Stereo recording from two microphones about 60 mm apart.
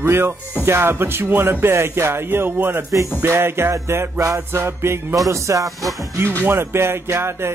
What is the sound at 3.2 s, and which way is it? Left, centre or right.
Music, right.